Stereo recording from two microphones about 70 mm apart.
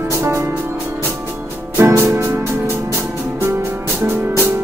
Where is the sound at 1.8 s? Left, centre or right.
Right.